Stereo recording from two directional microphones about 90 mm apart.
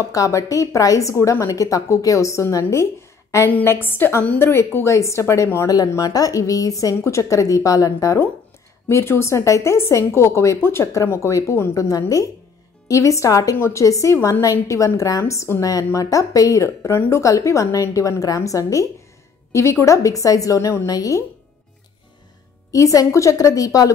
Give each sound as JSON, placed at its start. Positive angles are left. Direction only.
{"t": 0.1, "sound": "a woman's voice", "side_deg": 35}
{"t": 22.7, "sound": "a woman's voice", "side_deg": 35}